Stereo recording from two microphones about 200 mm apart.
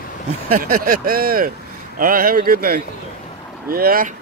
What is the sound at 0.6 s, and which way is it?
Speech, 45° right (ahead or behind).